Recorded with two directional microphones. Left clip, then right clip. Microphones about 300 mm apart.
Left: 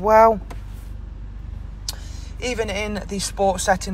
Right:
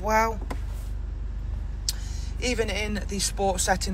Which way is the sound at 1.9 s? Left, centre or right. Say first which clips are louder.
Even; centre.